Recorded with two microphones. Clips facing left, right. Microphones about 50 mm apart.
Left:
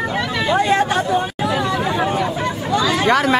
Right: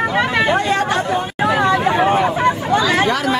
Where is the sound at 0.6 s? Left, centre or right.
Centre.